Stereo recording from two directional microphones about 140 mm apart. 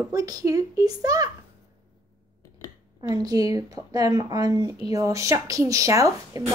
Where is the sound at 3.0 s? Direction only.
25° right (ahead or behind).